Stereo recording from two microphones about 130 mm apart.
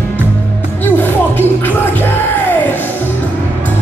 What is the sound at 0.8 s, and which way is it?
Music, 15° left (ahead or behind).